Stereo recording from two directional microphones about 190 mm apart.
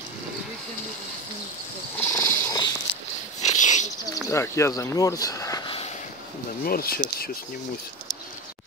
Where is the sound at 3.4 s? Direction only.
40° left (ahead or behind).